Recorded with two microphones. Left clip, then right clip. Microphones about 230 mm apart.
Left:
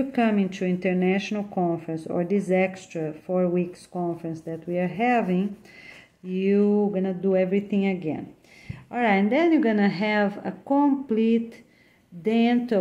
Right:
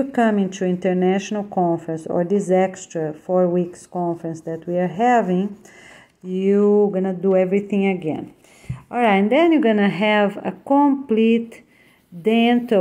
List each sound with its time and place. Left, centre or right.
0.3 s speech: right
11.1 s speech: centre
12.2 s speech: right